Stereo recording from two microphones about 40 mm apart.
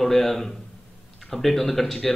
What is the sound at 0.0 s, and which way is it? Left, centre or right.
A man's voice, centre.